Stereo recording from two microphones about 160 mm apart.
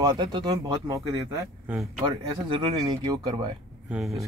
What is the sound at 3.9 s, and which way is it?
Speech, centre (ahead or behind).